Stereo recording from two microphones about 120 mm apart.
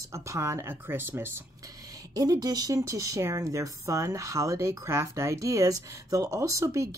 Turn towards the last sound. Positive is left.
turn(degrees=-25)  # may be behind; listen again after turning